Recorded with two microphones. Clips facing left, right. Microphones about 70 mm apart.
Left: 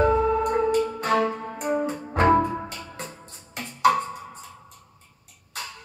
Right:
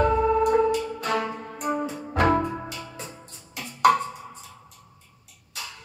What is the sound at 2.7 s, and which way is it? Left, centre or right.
Music, left.